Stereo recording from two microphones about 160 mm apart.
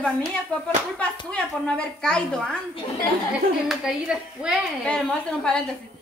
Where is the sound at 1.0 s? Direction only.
10° left (ahead or behind).